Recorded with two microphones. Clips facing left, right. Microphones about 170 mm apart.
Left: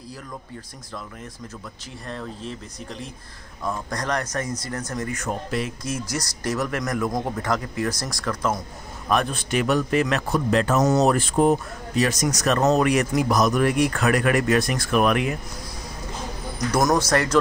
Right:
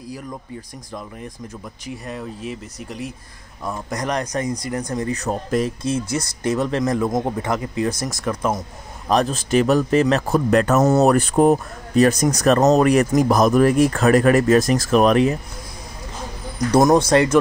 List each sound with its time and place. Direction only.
1.9 s speech: 10° right (ahead or behind)
5.0 s speech: 35° right (ahead or behind); by 8.6 s 15° right (ahead or behind)
9.1 s speech: 40° right (ahead or behind)
10.3 s speech: 50° right (ahead or behind); by 15.3 s 35° right (ahead or behind)
16.7 s speech: 25° right (ahead or behind)